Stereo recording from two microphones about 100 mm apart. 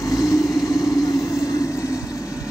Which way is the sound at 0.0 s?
35° left (ahead or behind).